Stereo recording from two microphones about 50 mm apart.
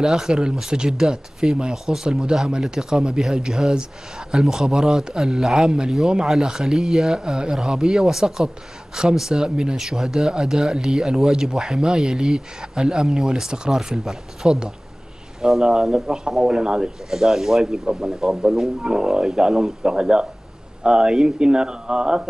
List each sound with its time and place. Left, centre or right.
0.0 s speech: centre